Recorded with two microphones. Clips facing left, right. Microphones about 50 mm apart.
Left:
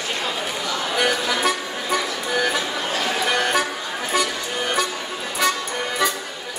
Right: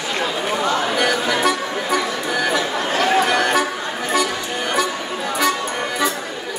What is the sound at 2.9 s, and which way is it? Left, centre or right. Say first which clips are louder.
Chatter: right 8 dB; right.